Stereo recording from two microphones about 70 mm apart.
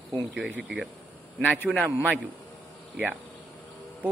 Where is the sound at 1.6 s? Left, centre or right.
Right.